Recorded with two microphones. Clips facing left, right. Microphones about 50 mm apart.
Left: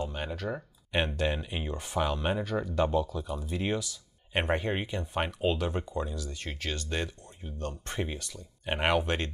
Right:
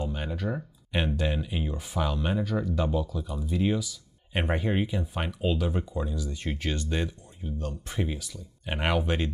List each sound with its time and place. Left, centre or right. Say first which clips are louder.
0.0 s speech: right 2 dB; centre
5.2 s speech: even; centre
5.7 s speech: right 2 dB; centre
6.1 s speech: right 5 dB; centre
6.9 s speech: right 3 dB; centre
7.9 s speech: right 5 dB; centre
9.0 s speech: right 3 dB; centre